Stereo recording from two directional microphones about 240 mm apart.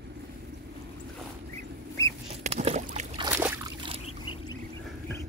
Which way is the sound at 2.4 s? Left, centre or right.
Right.